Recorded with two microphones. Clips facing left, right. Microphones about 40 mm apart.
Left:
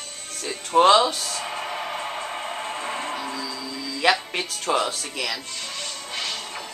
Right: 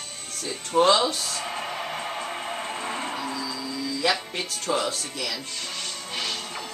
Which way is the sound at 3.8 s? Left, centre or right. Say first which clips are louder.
Left 4 dB; left.